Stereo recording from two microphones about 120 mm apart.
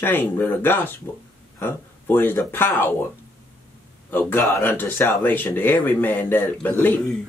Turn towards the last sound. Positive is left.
turn(degrees=15)  # may be behind; listen again after turning